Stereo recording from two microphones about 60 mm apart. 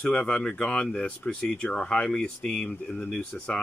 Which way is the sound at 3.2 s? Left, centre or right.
Left.